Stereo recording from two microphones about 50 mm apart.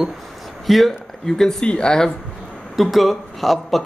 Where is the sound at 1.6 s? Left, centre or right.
Centre.